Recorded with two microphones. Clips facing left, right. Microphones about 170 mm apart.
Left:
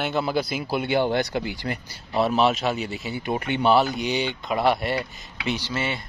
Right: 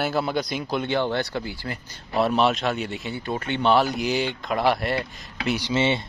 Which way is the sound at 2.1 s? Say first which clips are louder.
Even; centre (ahead or behind).